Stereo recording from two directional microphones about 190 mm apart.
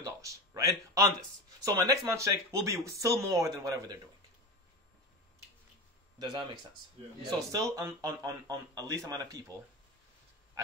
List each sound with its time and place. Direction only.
0.0 s a sound: 15° right (ahead or behind)
1.6 s speech: 20° right (ahead or behind)
7.2 s speech: 20° right (ahead or behind)